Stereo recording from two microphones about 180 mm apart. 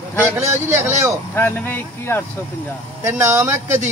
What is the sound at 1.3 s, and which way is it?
Speech, 15° left (ahead or behind).